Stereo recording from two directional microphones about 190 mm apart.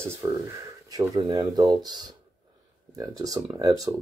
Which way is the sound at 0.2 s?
15° right (ahead or behind).